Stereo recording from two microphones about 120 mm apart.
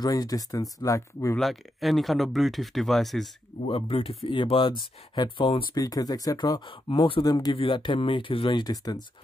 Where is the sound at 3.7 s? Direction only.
50° left (ahead or behind).